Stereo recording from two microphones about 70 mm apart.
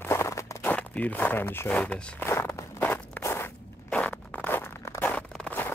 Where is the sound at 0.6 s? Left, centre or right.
Left.